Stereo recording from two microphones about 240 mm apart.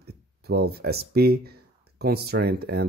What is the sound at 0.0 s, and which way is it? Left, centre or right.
Speech, right.